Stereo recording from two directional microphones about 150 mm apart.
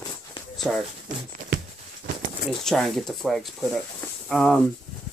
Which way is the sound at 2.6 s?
Centre (ahead or behind).